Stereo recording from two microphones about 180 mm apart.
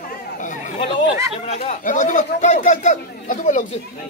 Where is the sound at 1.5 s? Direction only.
40° left (ahead or behind).